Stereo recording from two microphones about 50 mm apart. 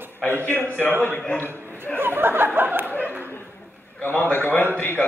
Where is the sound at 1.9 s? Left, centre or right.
Right.